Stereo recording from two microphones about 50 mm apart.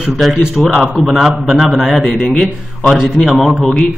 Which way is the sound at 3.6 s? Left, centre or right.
Centre.